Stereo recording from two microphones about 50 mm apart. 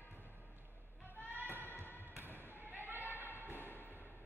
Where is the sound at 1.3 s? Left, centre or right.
Right.